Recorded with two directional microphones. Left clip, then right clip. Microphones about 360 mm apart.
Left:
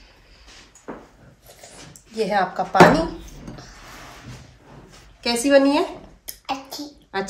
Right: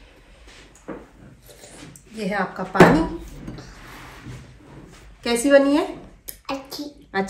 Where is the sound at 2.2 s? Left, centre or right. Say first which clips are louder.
Left 5 dB; left.